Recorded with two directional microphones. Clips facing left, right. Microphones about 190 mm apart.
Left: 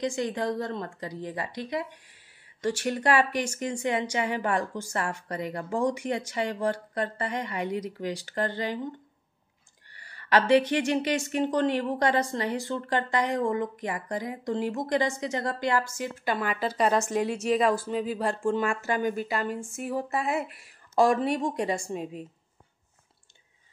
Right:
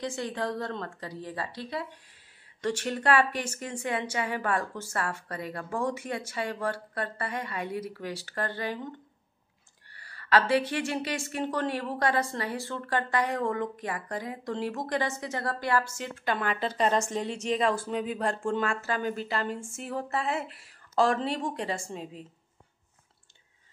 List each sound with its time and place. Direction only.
0.0 s a woman's voice: 15° left (ahead or behind)
10.0 s a woman's voice: 15° left (ahead or behind)
18.6 s a woman's voice: 15° left (ahead or behind)